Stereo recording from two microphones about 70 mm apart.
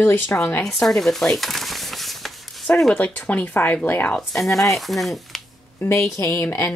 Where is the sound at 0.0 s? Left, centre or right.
Left.